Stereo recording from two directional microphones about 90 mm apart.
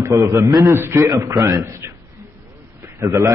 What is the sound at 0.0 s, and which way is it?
A man's voice, 30° right (ahead or behind).